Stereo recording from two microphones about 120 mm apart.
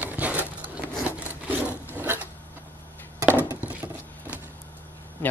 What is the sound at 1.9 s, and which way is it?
Wood, 15° right (ahead or behind).